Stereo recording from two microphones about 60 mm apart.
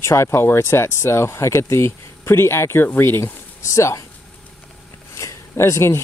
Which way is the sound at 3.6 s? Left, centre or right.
Left.